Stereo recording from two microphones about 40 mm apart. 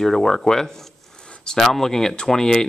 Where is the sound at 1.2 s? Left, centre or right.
Left.